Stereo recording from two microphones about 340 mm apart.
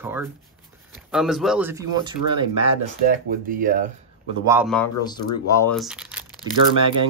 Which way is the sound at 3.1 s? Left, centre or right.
Right.